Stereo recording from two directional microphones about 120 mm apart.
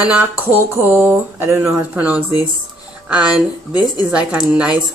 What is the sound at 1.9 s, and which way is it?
A woman's voice, 10° right (ahead or behind).